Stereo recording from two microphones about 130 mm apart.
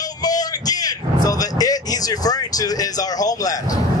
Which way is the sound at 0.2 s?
30° left (ahead or behind).